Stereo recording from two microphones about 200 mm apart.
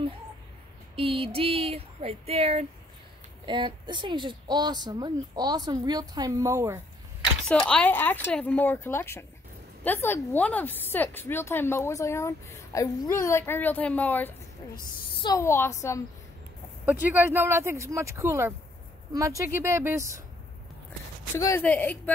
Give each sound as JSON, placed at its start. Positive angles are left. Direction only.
{"t": 0.9, "sound": "a woman's voice", "side_deg": -30}
{"t": 7.4, "sound": "speech", "side_deg": 5}
{"t": 16.8, "sound": "speech", "side_deg": -10}
{"t": 21.4, "sound": "speech", "side_deg": 15}